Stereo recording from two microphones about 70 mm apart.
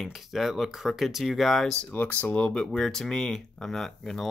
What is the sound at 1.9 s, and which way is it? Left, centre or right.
Speech, left.